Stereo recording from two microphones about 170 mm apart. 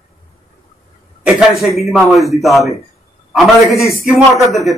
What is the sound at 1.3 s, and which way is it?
A man's voice, centre (ahead or behind).